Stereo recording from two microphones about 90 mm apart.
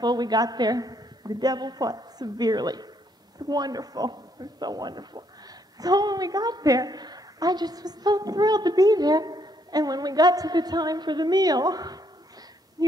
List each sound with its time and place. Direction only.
0.0 s a woman's voice: 50° right (ahead or behind)